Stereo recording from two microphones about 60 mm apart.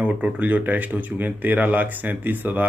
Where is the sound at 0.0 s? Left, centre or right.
Right.